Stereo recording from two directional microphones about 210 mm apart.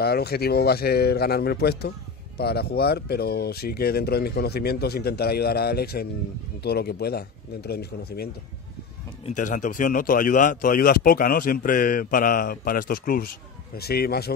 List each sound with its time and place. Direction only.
0.0 s speech: 50° left (ahead or behind)
9.2 s speech: 35° left (ahead or behind)